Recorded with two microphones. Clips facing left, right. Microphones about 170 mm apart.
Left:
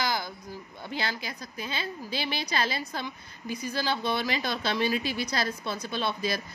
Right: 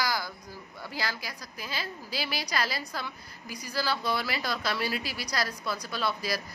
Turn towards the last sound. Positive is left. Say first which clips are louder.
# left 1 dB
turn(degrees=25)  # may be behind; listen again after turning